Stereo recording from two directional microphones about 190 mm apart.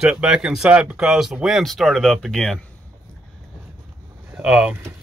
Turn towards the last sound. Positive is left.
turn(degrees=-5)  # may be behind; listen again after turning